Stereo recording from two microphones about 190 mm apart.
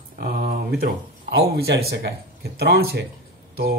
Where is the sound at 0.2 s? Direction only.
50° right (ahead or behind).